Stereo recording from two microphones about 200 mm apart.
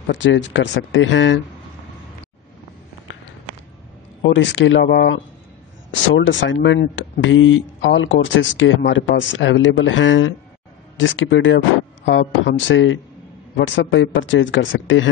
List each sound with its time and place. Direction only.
0.0 s speech: 65° left (ahead or behind)
4.2 s speech: 65° left (ahead or behind)